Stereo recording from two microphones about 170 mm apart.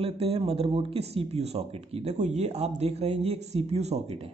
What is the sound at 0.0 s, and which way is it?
A man's voice, 35° right (ahead or behind).